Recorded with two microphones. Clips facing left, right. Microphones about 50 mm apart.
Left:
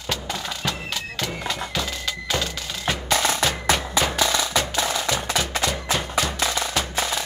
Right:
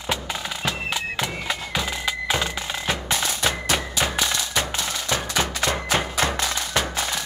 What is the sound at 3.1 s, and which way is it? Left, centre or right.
Music, left.